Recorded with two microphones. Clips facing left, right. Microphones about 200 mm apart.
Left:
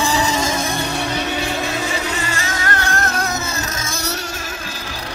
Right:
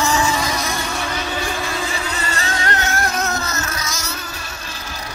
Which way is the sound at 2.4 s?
25° right (ahead or behind).